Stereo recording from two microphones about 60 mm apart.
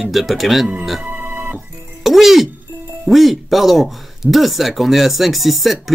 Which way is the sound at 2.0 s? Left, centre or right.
Centre.